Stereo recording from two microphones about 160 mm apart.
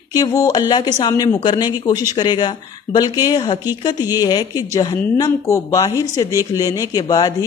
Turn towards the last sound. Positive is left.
turn(degrees=25)  # may be behind; listen again after turning